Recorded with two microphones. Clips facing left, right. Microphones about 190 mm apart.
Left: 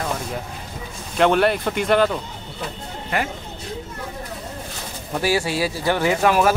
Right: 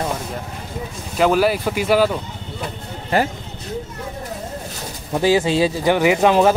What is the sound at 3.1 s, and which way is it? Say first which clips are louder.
Speech: right 6 dB; 35° right (ahead or behind).